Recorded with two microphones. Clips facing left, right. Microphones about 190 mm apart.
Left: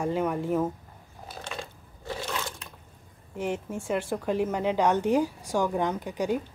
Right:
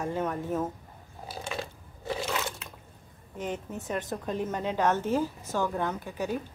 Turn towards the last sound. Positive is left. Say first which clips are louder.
# left 4 dB
turn(degrees=15)  # may be behind; listen again after turning